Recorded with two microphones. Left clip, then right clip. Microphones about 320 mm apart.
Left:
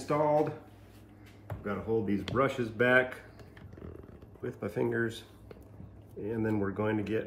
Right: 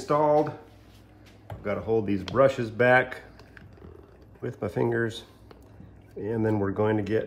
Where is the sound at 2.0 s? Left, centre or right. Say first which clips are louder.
Right 8 dB; right.